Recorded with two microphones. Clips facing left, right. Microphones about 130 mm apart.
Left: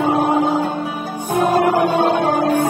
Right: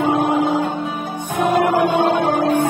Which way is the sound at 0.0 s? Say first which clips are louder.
Left 1 dB; 35° left (ahead or behind).